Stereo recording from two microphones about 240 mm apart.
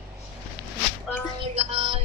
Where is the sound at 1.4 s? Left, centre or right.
Right.